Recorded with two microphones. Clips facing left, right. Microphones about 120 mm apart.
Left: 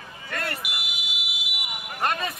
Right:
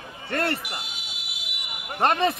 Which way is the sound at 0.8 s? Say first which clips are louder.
Left 4 dB; 10° left (ahead or behind).